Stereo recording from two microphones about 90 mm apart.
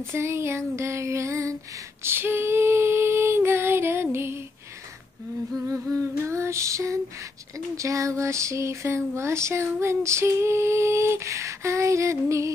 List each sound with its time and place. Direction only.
0.0 s speech: 30° right (ahead or behind)
2.0 s female singing: 25° right (ahead or behind)
6.2 s speech: 30° right (ahead or behind)